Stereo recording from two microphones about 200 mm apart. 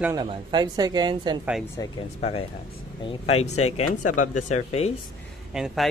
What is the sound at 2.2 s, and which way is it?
Speech, 30° left (ahead or behind).